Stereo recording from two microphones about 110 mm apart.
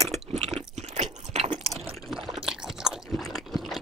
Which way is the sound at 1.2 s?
70° right (ahead or behind).